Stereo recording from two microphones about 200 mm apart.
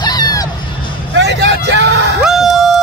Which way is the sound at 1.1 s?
60° right (ahead or behind).